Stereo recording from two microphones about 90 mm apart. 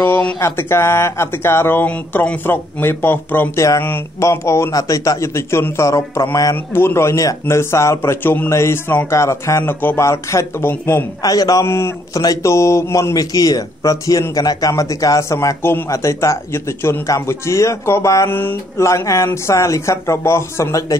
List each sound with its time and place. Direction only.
0.0 s speech: 15° left (ahead or behind)
0.4 s speech: 30° left (ahead or behind)
11.2 s a man's voice: 45° left (ahead or behind)
11.6 s speech: 30° left (ahead or behind)
12.1 s a man's voice: 40° left (ahead or behind)
12.5 s speech: 30° left (ahead or behind)
13.1 s a man's voice: 45° left (ahead or behind)